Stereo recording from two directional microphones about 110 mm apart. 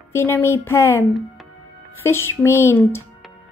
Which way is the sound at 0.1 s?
20° left (ahead or behind).